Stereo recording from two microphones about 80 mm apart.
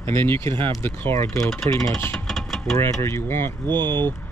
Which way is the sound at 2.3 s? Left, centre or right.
Centre.